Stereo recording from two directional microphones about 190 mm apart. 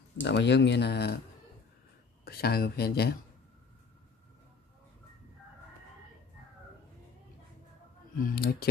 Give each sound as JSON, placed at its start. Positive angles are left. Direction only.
{"t": 0.2, "sound": "speech", "side_deg": 65}
{"t": 2.2, "sound": "speech", "side_deg": 55}
{"t": 8.2, "sound": "speech", "side_deg": 50}